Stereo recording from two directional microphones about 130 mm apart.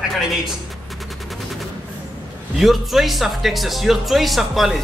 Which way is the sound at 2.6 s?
Centre (ahead or behind).